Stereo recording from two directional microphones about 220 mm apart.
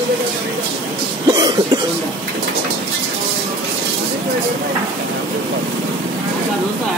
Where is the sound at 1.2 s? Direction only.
20° right (ahead or behind).